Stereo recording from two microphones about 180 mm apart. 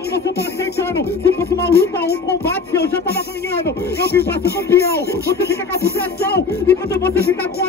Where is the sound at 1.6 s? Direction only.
60° left (ahead or behind).